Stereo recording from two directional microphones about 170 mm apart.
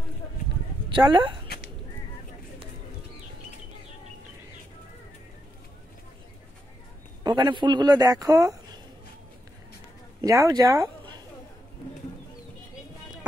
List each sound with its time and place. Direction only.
0.8 s speech: 25° right (ahead or behind)
7.2 s speech: 25° right (ahead or behind)
10.2 s speech: 20° right (ahead or behind)